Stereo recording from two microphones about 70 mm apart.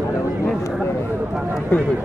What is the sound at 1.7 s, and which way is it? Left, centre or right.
Speech, left.